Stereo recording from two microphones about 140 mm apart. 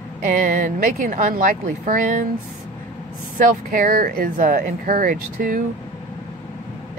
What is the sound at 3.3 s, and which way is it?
Speech, 85° right.